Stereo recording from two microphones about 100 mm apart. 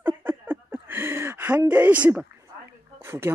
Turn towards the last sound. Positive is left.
turn(degrees=-25)  # may be behind; listen again after turning